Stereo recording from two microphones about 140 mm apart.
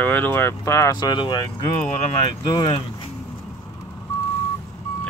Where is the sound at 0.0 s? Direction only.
15° left (ahead or behind); by 2.8 s 30° left (ahead or behind).